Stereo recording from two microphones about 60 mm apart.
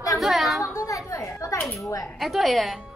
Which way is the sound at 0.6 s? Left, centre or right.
Left.